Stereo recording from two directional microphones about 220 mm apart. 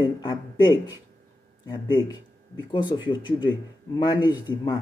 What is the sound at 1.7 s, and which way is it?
Speech, 20° left (ahead or behind).